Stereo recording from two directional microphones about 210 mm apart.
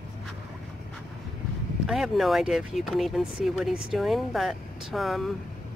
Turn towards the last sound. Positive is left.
turn(degrees=0)  # may be behind; listen again after turning